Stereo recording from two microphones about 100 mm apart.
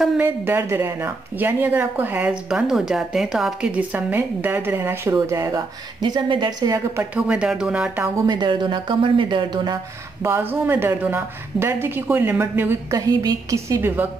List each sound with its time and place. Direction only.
0.2 s speech: 20° right (ahead or behind)
5.9 s speech: 45° right (ahead or behind)
7.2 s speech: 10° right (ahead or behind)
8.3 s speech: 50° right (ahead or behind)
10.2 s speech: 25° right (ahead or behind)
13.0 s a woman's voice: 40° right (ahead or behind)